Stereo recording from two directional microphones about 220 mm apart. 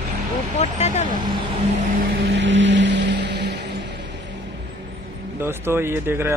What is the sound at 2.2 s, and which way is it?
Music, 55° right (ahead or behind).